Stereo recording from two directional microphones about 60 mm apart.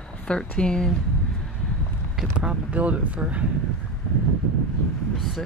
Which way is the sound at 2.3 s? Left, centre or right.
Right.